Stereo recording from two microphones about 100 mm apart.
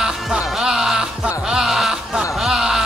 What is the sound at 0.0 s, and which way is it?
Music, 5° right (ahead or behind).